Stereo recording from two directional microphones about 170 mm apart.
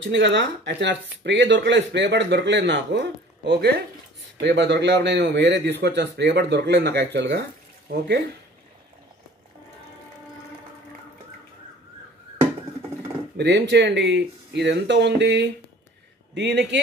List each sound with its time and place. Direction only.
0.1 s a man's voice: 90° right
13.4 s speech: 90° right